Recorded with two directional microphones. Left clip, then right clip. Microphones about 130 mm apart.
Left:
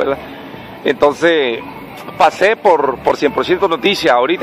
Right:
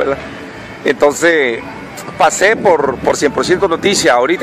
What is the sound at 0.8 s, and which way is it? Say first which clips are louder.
Speech: right 1 dB; 10° right (ahead or behind).